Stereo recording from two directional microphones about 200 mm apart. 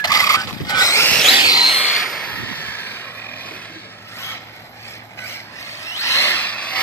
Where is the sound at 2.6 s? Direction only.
10° left (ahead or behind).